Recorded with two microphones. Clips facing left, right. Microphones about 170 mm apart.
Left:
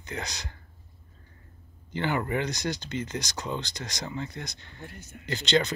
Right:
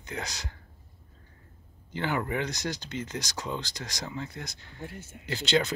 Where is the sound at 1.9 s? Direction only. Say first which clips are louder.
Left 2 dB; centre (ahead or behind).